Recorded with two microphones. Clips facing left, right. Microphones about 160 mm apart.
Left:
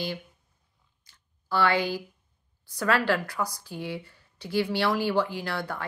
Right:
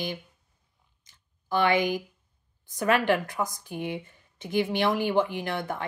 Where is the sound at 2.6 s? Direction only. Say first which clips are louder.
Right 1 dB; 20° right (ahead or behind).